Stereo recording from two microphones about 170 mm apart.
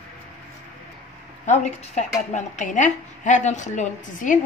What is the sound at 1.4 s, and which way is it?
A woman's voice, 45° left (ahead or behind).